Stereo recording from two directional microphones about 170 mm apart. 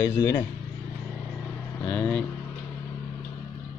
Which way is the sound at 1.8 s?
5° left (ahead or behind).